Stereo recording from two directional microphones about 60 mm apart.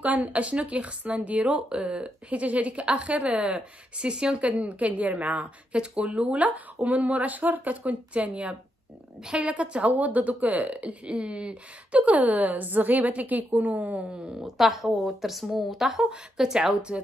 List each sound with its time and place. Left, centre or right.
0.0 s speech: right
14.0 s speech: centre